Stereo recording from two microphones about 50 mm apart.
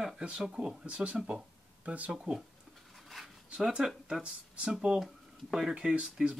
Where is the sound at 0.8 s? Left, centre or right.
Right.